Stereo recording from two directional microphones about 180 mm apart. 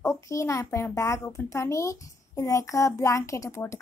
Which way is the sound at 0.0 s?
15° left (ahead or behind).